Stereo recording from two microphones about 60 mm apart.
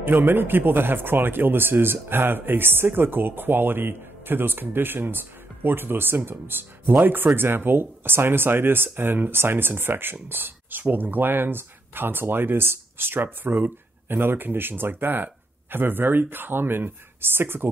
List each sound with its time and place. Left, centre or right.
0.0 s speech: right